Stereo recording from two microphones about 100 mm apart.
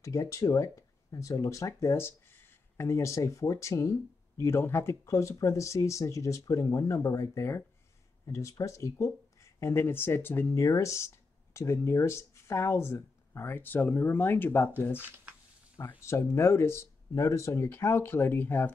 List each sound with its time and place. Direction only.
0.0 s speech: 35° left (ahead or behind)
15.0 s speech: 20° right (ahead or behind)
16.0 s speech: 25° left (ahead or behind)